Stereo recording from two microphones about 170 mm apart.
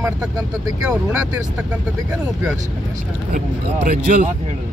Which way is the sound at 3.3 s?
50° right (ahead or behind).